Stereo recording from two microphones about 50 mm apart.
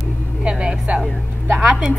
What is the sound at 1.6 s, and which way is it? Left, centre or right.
Speech, centre.